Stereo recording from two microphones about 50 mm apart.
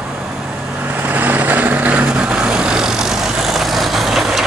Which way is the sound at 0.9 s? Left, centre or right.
Right.